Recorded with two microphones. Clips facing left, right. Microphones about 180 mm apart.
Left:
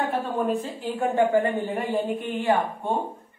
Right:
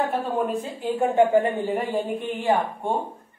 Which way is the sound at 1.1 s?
20° right (ahead or behind).